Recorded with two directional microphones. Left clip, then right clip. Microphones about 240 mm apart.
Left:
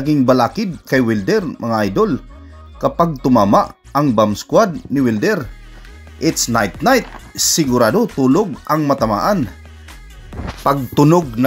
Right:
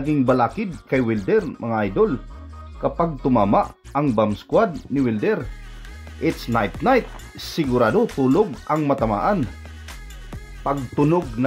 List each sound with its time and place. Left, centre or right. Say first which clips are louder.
0.0 s speech: left 5 dB; centre
10.6 s speech: left 7 dB; left